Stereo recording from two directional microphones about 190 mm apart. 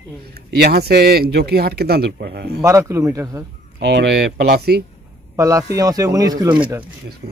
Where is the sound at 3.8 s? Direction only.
65° right (ahead or behind).